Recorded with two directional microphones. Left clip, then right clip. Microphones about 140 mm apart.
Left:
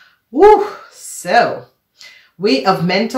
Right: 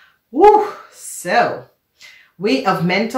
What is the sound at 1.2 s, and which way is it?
Speech, 30° left (ahead or behind).